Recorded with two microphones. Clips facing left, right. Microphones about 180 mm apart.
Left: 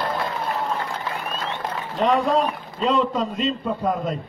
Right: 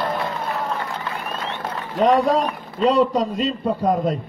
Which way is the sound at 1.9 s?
40° right (ahead or behind).